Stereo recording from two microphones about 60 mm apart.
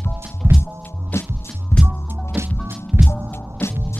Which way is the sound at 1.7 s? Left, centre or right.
Left.